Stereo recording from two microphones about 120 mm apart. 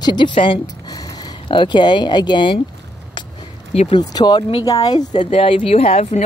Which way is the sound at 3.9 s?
35° left (ahead or behind).